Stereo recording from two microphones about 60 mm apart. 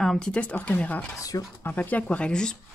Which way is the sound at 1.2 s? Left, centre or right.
Left.